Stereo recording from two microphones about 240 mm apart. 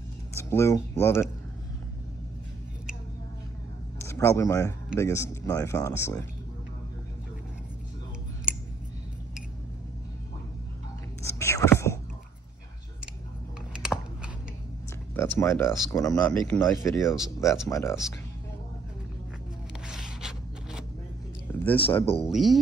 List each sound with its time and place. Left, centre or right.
0.3 s speech: centre
4.0 s speech: centre
11.2 s whispering: centre
13.7 s typing: centre
15.1 s speech: centre
19.9 s a sound: centre
21.7 s speech: left
22.2 s speech: centre